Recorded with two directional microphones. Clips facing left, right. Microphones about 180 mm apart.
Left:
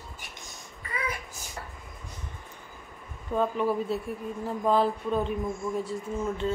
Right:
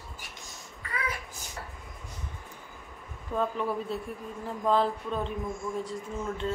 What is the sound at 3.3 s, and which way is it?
Speech, 5° left (ahead or behind).